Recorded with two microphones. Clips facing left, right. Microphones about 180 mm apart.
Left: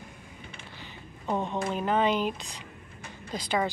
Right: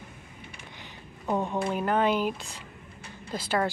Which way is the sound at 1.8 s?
10° right (ahead or behind).